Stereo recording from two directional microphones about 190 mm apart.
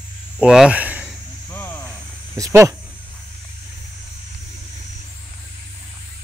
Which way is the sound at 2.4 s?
20° right (ahead or behind).